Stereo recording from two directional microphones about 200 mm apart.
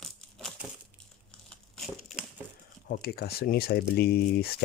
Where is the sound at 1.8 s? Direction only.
Centre (ahead or behind).